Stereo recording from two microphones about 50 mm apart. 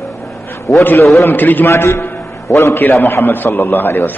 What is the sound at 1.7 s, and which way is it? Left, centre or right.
A man's voice, left.